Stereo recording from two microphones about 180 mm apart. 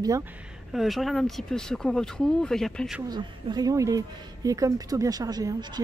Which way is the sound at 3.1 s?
25° right (ahead or behind).